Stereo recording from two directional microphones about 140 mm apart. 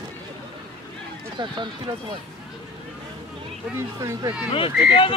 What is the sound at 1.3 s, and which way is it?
Speech, 35° right (ahead or behind).